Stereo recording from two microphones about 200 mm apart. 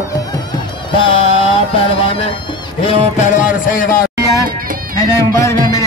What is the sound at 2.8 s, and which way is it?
Speech, 40° left (ahead or behind).